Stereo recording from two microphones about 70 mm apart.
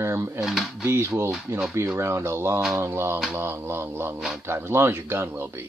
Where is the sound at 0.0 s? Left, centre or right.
Right.